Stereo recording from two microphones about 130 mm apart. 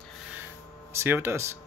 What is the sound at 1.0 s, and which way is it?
Speech, 20° right (ahead or behind).